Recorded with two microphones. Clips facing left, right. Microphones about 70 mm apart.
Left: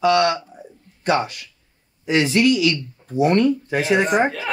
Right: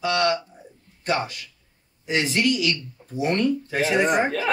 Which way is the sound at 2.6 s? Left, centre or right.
Left.